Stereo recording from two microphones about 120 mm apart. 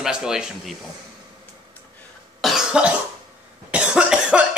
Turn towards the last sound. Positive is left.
turn(degrees=-10)  # may be behind; listen again after turning